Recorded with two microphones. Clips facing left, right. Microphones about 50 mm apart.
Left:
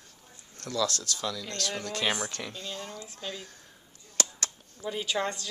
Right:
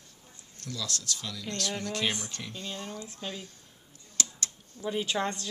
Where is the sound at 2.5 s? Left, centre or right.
Right.